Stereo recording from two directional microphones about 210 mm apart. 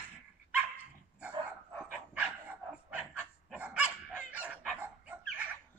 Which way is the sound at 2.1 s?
5° right (ahead or behind).